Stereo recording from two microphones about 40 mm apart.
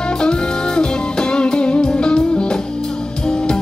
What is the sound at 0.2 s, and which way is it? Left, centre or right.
Music, left.